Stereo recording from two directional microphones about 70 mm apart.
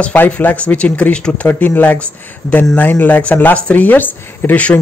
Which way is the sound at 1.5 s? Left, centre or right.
Left.